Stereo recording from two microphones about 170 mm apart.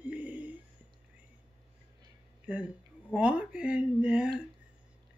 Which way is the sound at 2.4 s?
5° right (ahead or behind).